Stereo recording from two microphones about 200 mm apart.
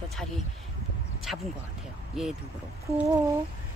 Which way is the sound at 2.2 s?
Centre (ahead or behind).